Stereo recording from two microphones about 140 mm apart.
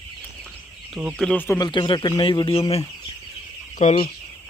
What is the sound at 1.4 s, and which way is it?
A man's voice, 30° left (ahead or behind).